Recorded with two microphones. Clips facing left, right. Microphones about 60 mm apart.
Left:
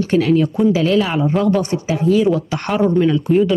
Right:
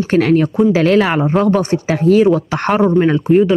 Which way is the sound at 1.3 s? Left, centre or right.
Right.